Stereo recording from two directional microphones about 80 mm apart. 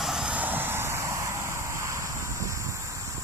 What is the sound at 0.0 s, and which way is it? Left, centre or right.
Vehicle, centre.